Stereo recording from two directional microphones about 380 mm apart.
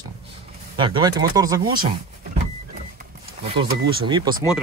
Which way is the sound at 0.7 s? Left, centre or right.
Centre.